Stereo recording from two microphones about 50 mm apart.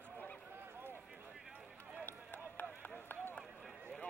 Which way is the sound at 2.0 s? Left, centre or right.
Left.